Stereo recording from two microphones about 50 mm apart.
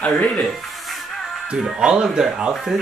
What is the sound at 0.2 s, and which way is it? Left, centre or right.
Speech, left.